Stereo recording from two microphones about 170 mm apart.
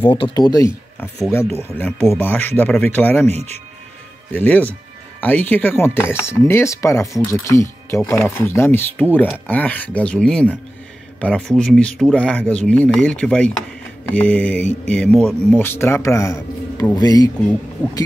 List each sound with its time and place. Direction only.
0.0 s speech: 30° left (ahead or behind)